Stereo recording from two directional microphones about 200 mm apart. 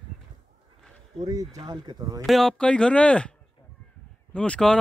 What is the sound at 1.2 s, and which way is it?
Speech, 20° right (ahead or behind).